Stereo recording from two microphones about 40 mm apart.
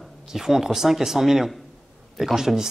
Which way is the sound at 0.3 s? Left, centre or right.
Centre.